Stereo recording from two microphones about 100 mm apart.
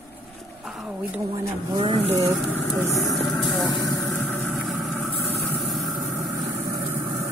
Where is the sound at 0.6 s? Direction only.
5° right (ahead or behind).